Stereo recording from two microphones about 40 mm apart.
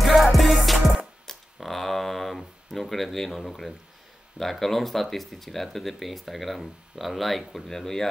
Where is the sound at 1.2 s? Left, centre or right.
Centre.